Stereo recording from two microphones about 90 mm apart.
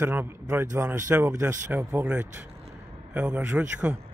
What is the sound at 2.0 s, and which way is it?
A man's voice, 20° right (ahead or behind).